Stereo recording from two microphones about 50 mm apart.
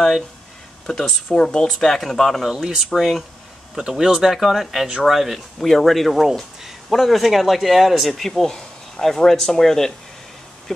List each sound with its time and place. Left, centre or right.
0.8 s speech: centre
1.7 s speech: centre
2.4 s speech: centre